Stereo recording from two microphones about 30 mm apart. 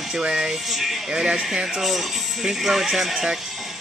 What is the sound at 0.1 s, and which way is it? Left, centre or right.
Speech, right.